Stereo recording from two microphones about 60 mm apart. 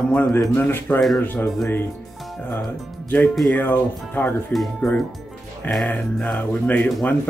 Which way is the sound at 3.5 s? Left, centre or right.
Left.